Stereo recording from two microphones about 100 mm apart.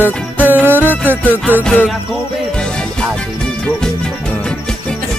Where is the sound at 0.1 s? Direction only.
10° left (ahead or behind).